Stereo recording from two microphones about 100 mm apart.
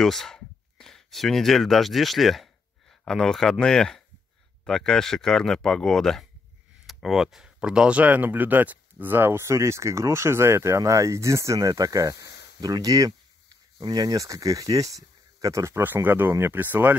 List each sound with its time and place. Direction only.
0.0 s speech: 5° left (ahead or behind); by 16.9 s 20° right (ahead or behind)